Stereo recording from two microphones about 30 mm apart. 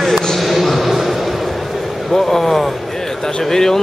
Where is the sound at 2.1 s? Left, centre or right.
Centre.